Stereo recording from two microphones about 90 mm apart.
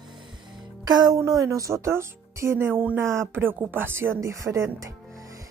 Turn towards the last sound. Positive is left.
turn(degrees=-35)  # may be behind; listen again after turning